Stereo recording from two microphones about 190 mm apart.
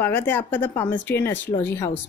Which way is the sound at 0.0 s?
10° left (ahead or behind).